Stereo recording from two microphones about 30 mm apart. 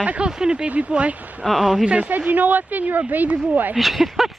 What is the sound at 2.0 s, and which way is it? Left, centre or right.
Speech, right.